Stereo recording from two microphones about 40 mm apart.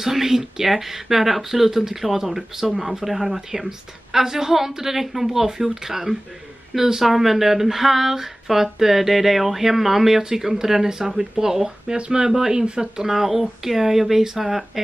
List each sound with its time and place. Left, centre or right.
0.0 s speech: centre
12.0 s speech: right
13.0 s speech: centre